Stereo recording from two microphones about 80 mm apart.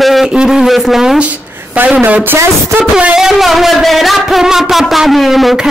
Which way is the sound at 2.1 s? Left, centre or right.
Centre.